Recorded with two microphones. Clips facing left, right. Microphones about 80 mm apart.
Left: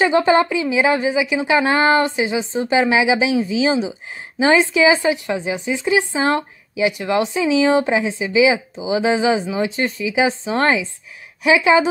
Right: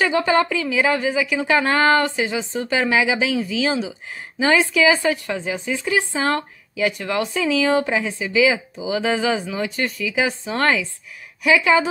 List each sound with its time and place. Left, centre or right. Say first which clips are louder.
0.0 s a woman's voice: left 3 dB; left